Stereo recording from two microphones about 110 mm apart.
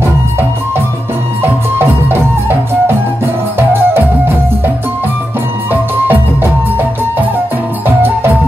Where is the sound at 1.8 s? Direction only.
20° right (ahead or behind).